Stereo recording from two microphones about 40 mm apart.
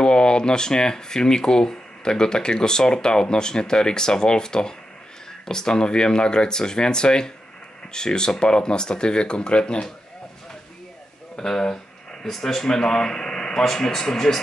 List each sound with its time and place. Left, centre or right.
0.0 s speech: left
11.3 s a sound: centre
12.4 s speech: centre